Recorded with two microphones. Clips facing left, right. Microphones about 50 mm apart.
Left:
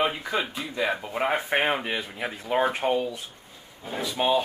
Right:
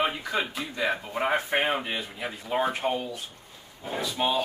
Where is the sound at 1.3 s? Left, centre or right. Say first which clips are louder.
Left 1 dB; left.